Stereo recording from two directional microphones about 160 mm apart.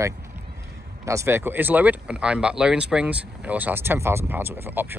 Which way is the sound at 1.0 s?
15° right (ahead or behind).